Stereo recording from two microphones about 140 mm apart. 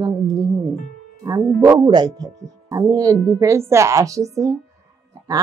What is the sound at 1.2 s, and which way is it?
Speech, 25° right (ahead or behind).